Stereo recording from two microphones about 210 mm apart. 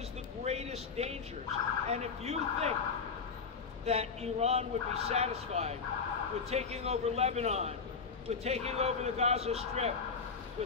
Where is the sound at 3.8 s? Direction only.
30° right (ahead or behind).